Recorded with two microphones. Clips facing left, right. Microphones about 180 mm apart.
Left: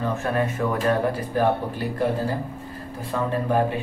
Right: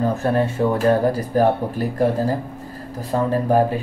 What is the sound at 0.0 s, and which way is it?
Speech, 35° right (ahead or behind).